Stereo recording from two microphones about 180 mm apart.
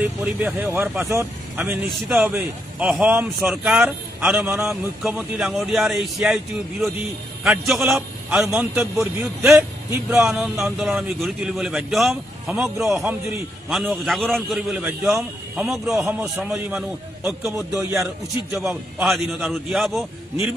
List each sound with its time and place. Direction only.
0.0 s a man's voice: 10° right (ahead or behind)
13.7 s a man's voice: centre (ahead or behind)
18.7 s a man's voice: centre (ahead or behind)